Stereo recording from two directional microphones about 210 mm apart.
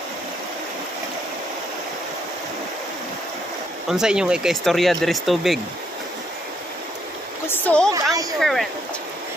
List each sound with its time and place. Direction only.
3.9 s speech: 5° right (ahead or behind)
7.4 s a sound: 10° left (ahead or behind)
7.9 s speech: 15° right (ahead or behind)
8.4 s speech: centre (ahead or behind)